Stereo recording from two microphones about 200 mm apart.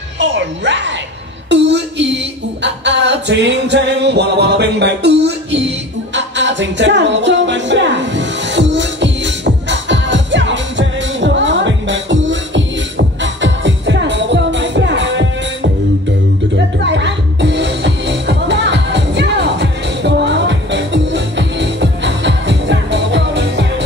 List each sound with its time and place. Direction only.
0.2 s music: 65° right (ahead or behind)
16.5 s music: 60° right (ahead or behind)